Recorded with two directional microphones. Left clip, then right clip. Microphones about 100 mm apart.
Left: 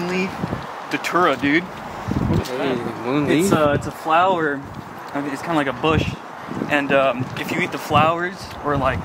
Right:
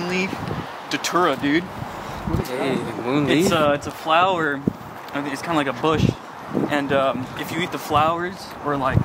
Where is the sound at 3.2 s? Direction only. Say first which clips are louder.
Left 1 dB; 25° right (ahead or behind).